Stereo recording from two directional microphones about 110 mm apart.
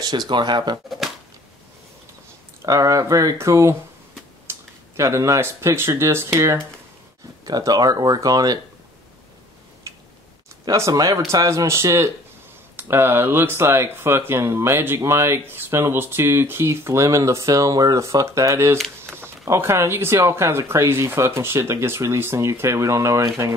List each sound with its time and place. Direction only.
0.0 s speech: 40° right (ahead or behind)
0.8 s shuffling cards: centre (ahead or behind)
2.6 s speech: 30° right (ahead or behind)
10.6 s speech: 35° right (ahead or behind)